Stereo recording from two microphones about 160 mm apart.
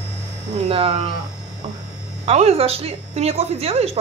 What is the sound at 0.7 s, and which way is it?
Speech, 35° right (ahead or behind).